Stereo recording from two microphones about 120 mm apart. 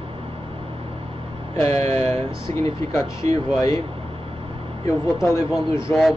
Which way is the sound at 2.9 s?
25° left (ahead or behind).